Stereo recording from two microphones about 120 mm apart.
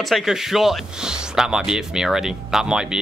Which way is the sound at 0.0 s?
Centre (ahead or behind).